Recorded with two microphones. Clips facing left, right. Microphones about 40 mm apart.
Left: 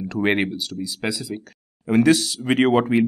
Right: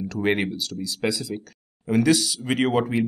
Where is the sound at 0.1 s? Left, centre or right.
Left.